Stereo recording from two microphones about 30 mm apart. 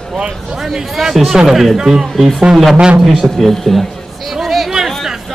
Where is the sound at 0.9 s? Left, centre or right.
Centre.